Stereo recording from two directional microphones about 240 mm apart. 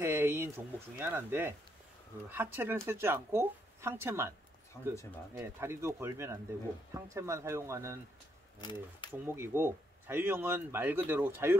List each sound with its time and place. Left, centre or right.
0.0 s a sound: centre
0.9 s speech: centre
4.7 s speech: centre
5.3 s speech: centre
8.5 s speech: centre
9.2 s speech: centre